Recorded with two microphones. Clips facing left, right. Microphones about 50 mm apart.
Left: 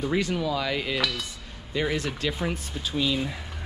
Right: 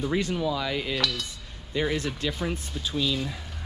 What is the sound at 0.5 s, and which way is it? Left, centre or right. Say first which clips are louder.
Cutlery: left 1 dB; left.